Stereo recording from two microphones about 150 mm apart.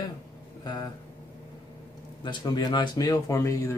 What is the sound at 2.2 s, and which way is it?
Speech, 30° left (ahead or behind).